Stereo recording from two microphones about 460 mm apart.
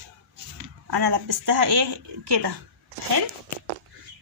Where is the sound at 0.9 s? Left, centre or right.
Right.